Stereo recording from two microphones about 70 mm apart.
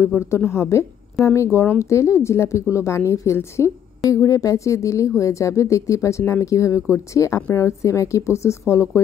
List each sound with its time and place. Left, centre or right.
0.0 s speech: left